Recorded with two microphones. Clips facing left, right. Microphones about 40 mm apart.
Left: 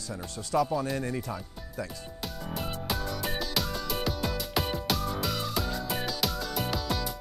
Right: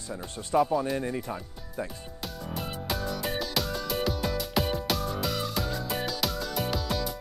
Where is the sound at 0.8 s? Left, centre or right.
Centre.